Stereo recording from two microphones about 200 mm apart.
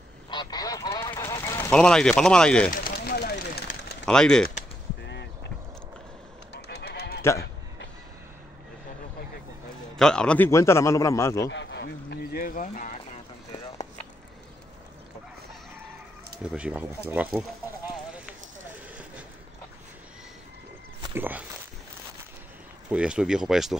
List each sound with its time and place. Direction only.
0.3 s goose: 20° left (ahead or behind)
1.7 s speech: 5° left (ahead or behind)
3.1 s vehicle: 50° left (ahead or behind)
4.0 s speech: 5° left (ahead or behind)
5.0 s a sound: 60° left (ahead or behind)
6.5 s goose: 55° left (ahead or behind)
9.9 s a man's voice: 5° left (ahead or behind)
11.5 s a sound: 65° left (ahead or behind); by 12.9 s 40° left (ahead or behind)
16.4 s speech: 5° right (ahead or behind)
21.1 s speech: 10° right (ahead or behind)
22.8 s speech: 5° right (ahead or behind)